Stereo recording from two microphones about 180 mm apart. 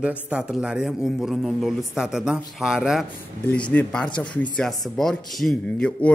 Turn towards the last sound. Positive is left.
turn(degrees=5)  # may be behind; listen again after turning